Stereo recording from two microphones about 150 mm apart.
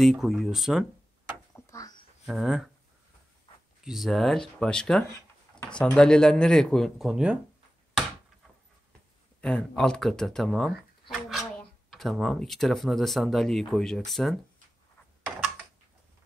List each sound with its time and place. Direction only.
0.0 s speech: centre (ahead or behind)
1.5 s a sound: 20° left (ahead or behind)
2.2 s speech: centre (ahead or behind)
3.8 s speech: centre (ahead or behind)
9.4 s speech: 5° left (ahead or behind)